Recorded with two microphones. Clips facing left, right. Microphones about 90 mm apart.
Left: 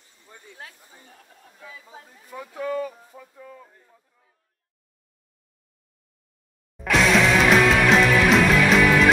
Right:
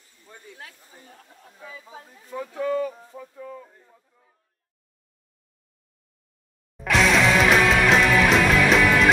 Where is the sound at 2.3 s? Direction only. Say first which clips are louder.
Right 3 dB; 10° left (ahead or behind).